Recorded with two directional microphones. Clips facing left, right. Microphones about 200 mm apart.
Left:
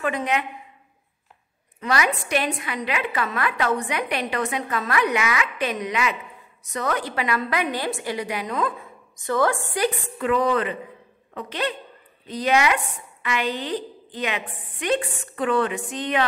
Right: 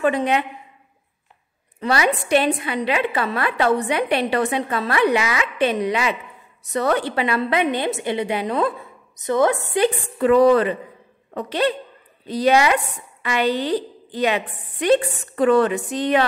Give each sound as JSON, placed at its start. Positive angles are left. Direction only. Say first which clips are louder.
{"t": 0.0, "sound": "a woman's voice", "louder": "right 5 dB", "side_deg": -30}
{"t": 1.8, "sound": "a woman's voice", "louder": "right 4 dB", "side_deg": -30}
{"t": 9.1, "sound": "a woman's voice", "louder": "right 4 dB", "side_deg": -20}
{"t": 10.1, "sound": "a woman's voice", "louder": "right 9 dB", "side_deg": -35}